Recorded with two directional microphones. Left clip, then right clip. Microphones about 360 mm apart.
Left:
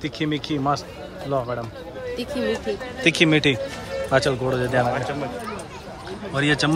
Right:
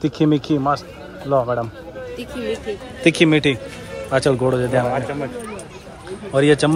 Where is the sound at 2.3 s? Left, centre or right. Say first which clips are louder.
Even; left.